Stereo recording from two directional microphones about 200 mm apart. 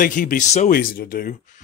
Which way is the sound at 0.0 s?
45° left (ahead or behind).